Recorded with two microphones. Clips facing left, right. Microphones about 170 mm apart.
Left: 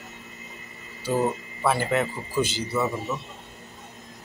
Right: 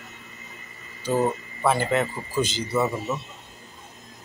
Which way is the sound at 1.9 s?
5° left (ahead or behind).